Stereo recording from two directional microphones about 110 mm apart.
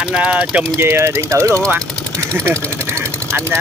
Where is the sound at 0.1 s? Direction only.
10° right (ahead or behind).